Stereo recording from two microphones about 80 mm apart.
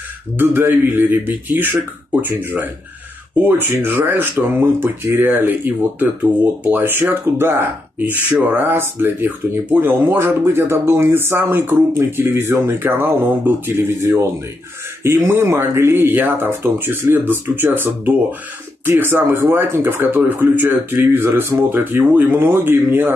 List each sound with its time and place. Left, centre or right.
0.4 s speech: right